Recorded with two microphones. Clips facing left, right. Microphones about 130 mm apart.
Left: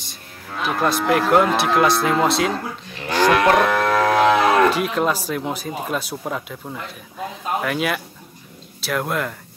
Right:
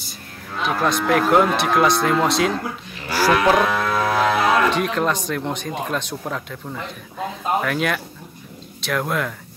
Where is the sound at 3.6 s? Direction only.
75° left (ahead or behind).